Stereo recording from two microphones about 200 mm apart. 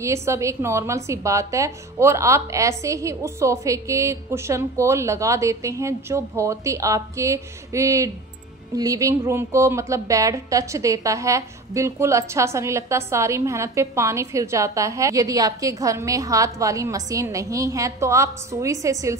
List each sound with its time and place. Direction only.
0.0 s a woman's voice: 15° right (ahead or behind)